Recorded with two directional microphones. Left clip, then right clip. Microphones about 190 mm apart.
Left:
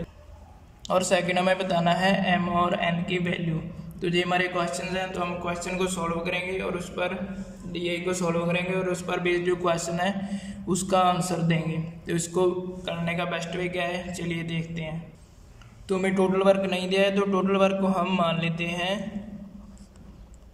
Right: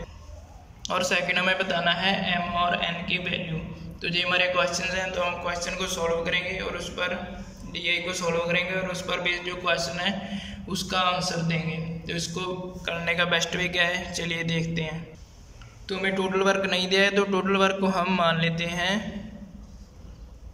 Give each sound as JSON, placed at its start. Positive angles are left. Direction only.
{"t": 0.8, "sound": "a man's voice", "side_deg": 25}
{"t": 12.8, "sound": "speech", "side_deg": 10}
{"t": 15.9, "sound": "speech", "side_deg": 30}